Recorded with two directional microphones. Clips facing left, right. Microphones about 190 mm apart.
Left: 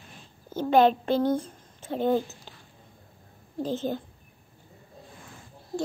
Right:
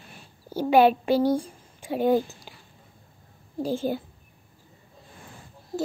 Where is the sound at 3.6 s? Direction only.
10° right (ahead or behind).